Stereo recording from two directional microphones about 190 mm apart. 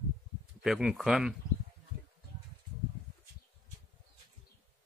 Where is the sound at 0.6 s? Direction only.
5° right (ahead or behind).